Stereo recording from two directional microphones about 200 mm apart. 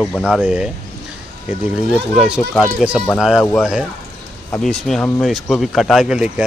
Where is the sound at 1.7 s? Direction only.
Centre (ahead or behind).